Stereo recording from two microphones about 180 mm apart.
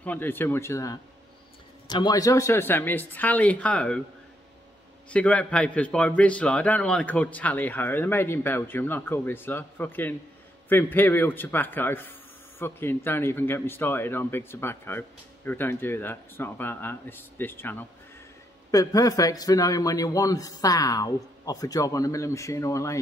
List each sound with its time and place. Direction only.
0.0 s a man's voice: 10° left (ahead or behind)
5.1 s a man's voice: 5° left (ahead or behind)